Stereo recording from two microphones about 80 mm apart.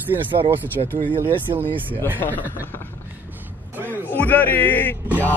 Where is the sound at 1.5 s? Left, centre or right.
Right.